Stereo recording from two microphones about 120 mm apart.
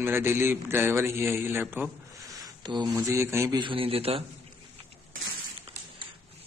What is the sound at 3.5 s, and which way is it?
Speech, 45° right (ahead or behind).